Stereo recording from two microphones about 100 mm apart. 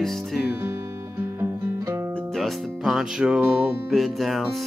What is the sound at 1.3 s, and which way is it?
Music, 25° right (ahead or behind).